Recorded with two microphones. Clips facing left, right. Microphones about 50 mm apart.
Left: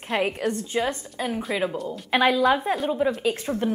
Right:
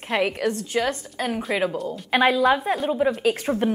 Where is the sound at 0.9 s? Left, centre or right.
Right.